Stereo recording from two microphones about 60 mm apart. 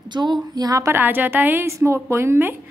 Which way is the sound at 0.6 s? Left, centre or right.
Right.